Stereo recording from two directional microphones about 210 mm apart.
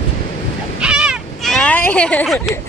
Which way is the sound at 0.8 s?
5° right (ahead or behind).